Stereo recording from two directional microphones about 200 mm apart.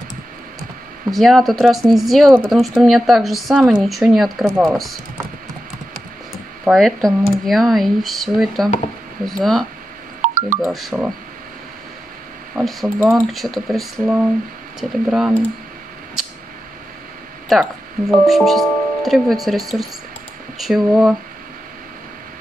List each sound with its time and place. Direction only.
1.1 s speech: centre (ahead or behind)
6.6 s speech: centre (ahead or behind)
10.2 s telephone dialing: 40° right (ahead or behind)
10.7 s speech: centre (ahead or behind)
12.5 s speech: centre (ahead or behind)
17.5 s speech: centre (ahead or behind)